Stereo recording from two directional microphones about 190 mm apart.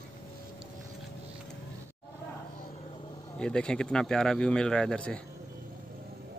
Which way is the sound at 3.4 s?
5° left (ahead or behind).